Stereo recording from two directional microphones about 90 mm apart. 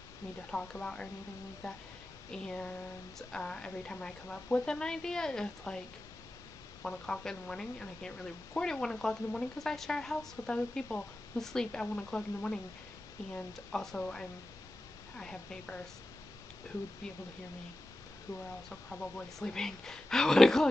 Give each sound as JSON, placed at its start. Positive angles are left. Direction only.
{"t": 0.5, "sound": "speech", "side_deg": 10}
{"t": 2.3, "sound": "speech", "side_deg": 10}
{"t": 6.9, "sound": "speech", "side_deg": 10}
{"t": 13.7, "sound": "speech", "side_deg": 10}
{"t": 18.3, "sound": "speech", "side_deg": 35}
{"t": 18.7, "sound": "speech", "side_deg": 10}